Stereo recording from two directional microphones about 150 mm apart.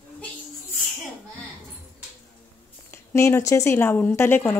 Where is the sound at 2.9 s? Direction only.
20° left (ahead or behind).